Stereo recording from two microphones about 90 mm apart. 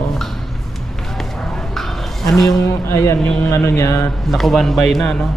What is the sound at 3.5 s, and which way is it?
Mantra, 35° left (ahead or behind).